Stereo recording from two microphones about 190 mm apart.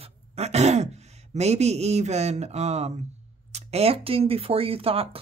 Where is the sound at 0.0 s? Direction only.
35° right (ahead or behind).